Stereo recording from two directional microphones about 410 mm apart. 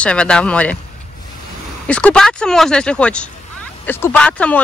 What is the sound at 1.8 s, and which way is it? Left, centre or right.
Speech, centre.